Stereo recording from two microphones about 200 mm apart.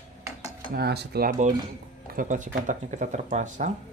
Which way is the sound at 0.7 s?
55° right (ahead or behind).